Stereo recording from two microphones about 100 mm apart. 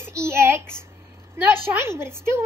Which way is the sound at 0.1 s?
25° right (ahead or behind).